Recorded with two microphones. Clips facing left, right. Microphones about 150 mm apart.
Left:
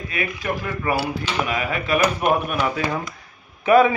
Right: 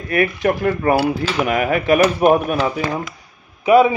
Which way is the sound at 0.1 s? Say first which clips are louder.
Right 10 dB; 55° right (ahead or behind).